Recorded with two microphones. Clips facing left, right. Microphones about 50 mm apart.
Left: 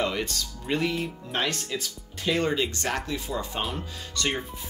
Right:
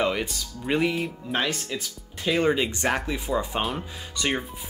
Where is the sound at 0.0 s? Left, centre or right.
Centre.